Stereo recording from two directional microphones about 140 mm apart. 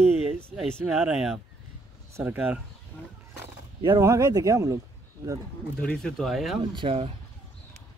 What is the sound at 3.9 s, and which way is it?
Speech, 25° right (ahead or behind).